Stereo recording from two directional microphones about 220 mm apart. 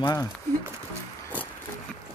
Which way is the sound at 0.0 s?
15° left (ahead or behind).